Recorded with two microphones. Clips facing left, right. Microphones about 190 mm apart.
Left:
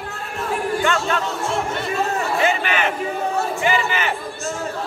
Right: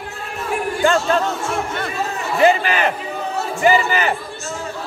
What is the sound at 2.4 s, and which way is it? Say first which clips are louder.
A man's voice: right 8 dB; 35° right (ahead or behind).